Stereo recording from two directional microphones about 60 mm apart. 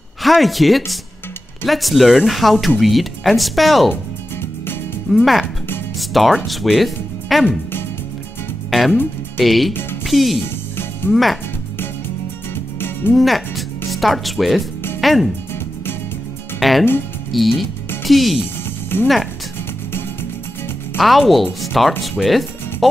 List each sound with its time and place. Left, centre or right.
0.2 s speech: centre
3.9 s music: left
5.1 s speech: centre
8.6 s music: centre
9.4 s speech: centre
13.1 s speech: centre
16.5 s speech: centre
18.9 s speech: left
21.0 s speech: centre